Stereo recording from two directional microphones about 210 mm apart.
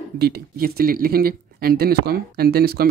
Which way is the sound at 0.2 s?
45° right (ahead or behind).